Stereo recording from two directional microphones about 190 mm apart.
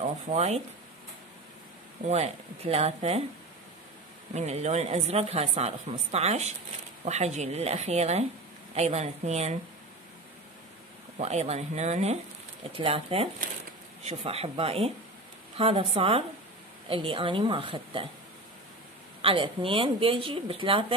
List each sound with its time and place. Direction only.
0.0 s speech: 35° right (ahead or behind)
2.0 s a woman's voice: 35° right (ahead or behind)
4.3 s a woman's voice: 35° right (ahead or behind)
11.1 s a woman's voice: 35° right (ahead or behind)
19.2 s speech: 30° right (ahead or behind)